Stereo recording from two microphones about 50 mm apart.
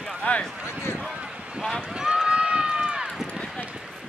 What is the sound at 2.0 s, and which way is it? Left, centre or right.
Run, centre.